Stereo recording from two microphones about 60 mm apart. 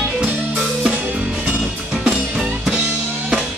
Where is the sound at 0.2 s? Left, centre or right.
Centre.